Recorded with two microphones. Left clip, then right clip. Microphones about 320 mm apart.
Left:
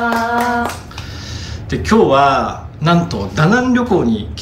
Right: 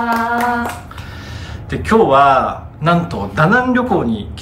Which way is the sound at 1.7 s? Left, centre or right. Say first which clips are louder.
Even; centre.